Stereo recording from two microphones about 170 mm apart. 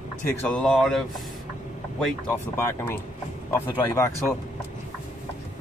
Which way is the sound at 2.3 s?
15° left (ahead or behind).